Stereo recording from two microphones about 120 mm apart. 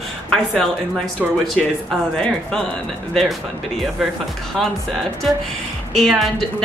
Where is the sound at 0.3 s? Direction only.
5° left (ahead or behind).